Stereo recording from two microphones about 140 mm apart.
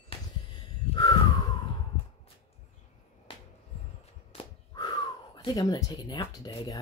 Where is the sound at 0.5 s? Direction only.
30° left (ahead or behind).